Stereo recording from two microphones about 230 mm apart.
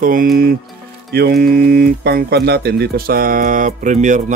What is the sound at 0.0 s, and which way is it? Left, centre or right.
Speech, right.